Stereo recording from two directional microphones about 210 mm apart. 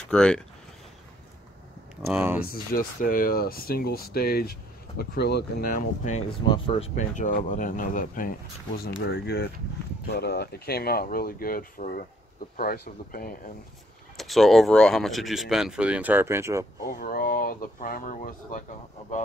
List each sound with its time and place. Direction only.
0.1 s speech: 5° left (ahead or behind)
2.1 s speech: 10° right (ahead or behind)
2.5 s speech: 40° left (ahead or behind)
6.4 s speech: 25° left (ahead or behind)
8.7 s speech: 50° left (ahead or behind)
14.1 s speech: centre (ahead or behind)
17.0 s speech: 45° left (ahead or behind)